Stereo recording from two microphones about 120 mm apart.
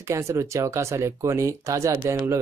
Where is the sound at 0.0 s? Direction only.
25° right (ahead or behind).